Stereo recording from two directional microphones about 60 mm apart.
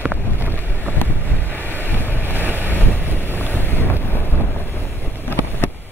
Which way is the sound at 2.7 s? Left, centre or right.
Left.